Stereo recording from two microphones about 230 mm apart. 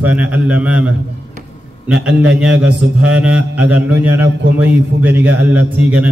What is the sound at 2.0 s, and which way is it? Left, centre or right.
A man's voice, centre.